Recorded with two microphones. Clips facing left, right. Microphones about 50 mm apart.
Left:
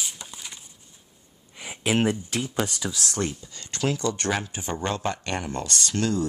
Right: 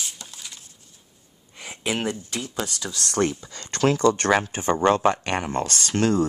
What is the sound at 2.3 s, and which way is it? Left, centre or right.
Speech, centre.